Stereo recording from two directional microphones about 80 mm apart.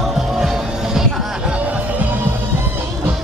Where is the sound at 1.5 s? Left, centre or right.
Centre.